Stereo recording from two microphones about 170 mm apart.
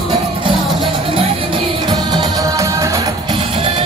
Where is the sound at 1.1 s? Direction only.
30° right (ahead or behind).